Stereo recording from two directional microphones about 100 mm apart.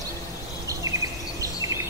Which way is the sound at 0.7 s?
35° right (ahead or behind).